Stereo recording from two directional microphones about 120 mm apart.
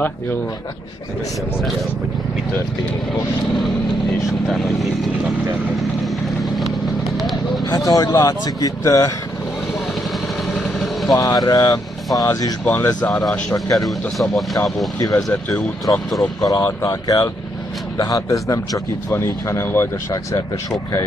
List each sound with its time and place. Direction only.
4.3 s speech: centre (ahead or behind)
5.8 s vehicle: centre (ahead or behind)
7.6 s speech: 30° left (ahead or behind)
10.5 s vehicle: centre (ahead or behind)
11.1 s a man's voice: 30° left (ahead or behind)
13.7 s speech: centre (ahead or behind)
15.0 s a man's voice: 30° left (ahead or behind)
15.2 s speech: centre (ahead or behind)
16.4 s a man's voice: 30° left (ahead or behind)